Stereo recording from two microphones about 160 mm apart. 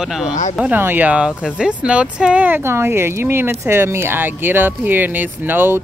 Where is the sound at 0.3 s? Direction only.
50° left (ahead or behind).